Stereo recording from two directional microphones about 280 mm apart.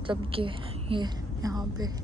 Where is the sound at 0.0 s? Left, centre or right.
Centre.